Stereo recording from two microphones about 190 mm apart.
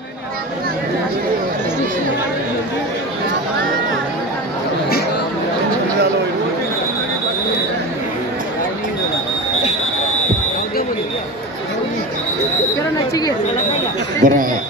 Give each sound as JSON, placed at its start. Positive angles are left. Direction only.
{"t": 14.2, "sound": "speech", "side_deg": -45}